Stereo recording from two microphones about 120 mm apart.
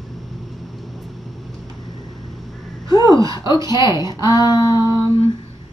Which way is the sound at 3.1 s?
30° right (ahead or behind).